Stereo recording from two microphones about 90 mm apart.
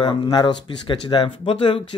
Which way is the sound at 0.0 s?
60° left (ahead or behind).